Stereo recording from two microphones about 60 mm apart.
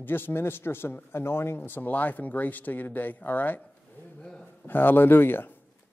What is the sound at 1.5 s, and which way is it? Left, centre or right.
Speech, left.